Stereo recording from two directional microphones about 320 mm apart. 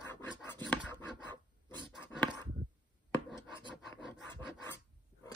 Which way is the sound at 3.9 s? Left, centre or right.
Centre.